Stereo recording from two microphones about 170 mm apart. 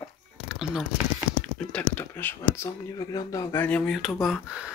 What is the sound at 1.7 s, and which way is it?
Speech, 10° left (ahead or behind).